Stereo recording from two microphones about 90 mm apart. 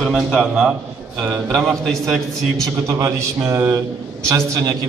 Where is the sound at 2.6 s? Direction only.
40° right (ahead or behind).